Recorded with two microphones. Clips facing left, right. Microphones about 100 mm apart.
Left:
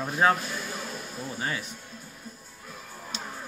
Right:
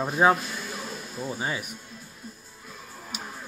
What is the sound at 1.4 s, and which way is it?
Speech, 15° right (ahead or behind).